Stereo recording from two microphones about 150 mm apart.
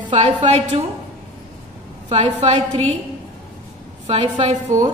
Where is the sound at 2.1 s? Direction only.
45° right (ahead or behind).